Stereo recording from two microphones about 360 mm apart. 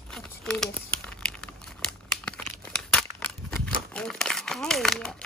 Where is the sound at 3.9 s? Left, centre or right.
Centre.